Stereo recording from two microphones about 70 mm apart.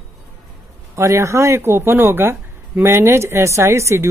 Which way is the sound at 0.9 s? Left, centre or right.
Right.